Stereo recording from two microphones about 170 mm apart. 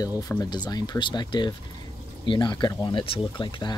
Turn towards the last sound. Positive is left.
turn(degrees=30)  # may be behind; listen again after turning